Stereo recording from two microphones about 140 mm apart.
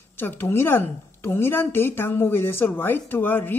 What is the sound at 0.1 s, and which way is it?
A woman's voice, 15° left (ahead or behind).